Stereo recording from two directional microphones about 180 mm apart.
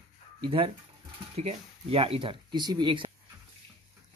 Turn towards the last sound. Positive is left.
turn(degrees=-25)  # may be behind; listen again after turning